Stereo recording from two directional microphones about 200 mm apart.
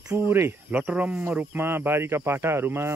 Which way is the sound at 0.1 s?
10° right (ahead or behind).